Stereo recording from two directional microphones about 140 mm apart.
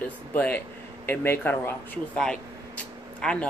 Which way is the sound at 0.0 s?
10° left (ahead or behind).